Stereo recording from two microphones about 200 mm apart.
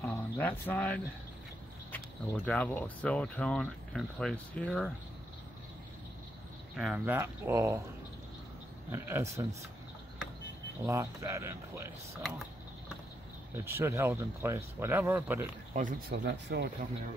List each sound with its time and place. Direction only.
0.0 s speech: 10° left (ahead or behind)
6.8 s speech: 5° right (ahead or behind)
8.9 s speech: 15° right (ahead or behind)
10.9 s speech: 15° right (ahead or behind)
13.7 s speech: 15° right (ahead or behind)
15.7 s speech: 45° right (ahead or behind)